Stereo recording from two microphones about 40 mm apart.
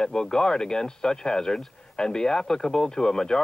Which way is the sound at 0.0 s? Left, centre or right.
Centre.